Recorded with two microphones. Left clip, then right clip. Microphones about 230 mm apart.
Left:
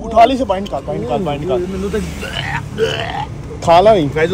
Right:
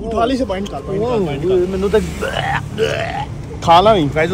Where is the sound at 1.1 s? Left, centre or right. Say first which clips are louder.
Even; centre.